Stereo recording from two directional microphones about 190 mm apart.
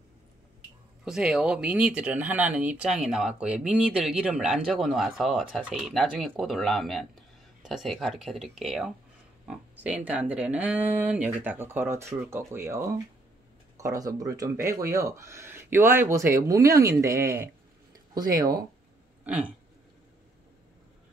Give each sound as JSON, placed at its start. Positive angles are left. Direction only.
{"t": 1.0, "sound": "speech", "side_deg": -5}
{"t": 19.2, "sound": "burping", "side_deg": -5}